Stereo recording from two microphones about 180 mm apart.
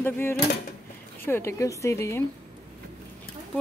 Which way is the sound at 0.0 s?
10° left (ahead or behind).